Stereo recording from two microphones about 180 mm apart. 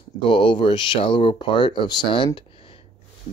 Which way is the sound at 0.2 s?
25° left (ahead or behind).